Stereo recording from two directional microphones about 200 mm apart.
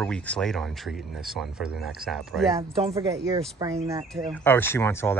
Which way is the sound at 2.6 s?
30° right (ahead or behind).